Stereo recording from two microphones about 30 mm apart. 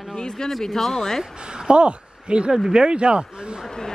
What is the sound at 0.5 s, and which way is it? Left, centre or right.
Speech, centre.